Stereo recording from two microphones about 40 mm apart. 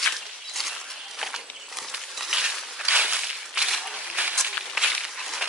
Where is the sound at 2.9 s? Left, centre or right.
Right.